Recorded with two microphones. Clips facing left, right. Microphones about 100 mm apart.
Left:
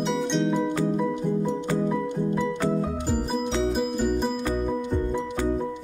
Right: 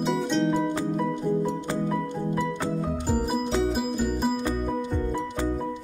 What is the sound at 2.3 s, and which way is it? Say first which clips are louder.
Music: left 2 dB; 5° right (ahead or behind).